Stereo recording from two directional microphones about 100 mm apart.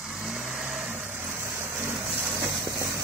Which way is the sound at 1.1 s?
20° right (ahead or behind).